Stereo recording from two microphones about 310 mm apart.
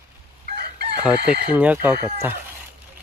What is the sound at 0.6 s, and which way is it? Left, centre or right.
Chicken, right.